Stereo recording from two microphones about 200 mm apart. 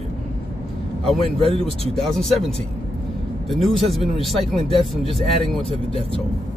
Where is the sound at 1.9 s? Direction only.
Centre (ahead or behind).